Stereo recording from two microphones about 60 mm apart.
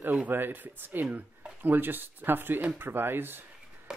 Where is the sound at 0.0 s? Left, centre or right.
Right.